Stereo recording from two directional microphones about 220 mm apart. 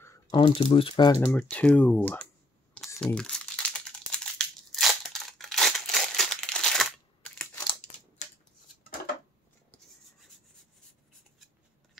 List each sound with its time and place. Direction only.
0.3 s speech: 20° left (ahead or behind)
1.2 s speech: 5° left (ahead or behind)
2.9 s crumpling: 10° left (ahead or behind)